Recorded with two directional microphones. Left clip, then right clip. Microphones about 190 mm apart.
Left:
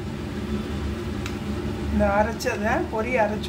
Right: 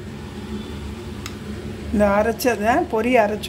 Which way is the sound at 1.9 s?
35° right (ahead or behind).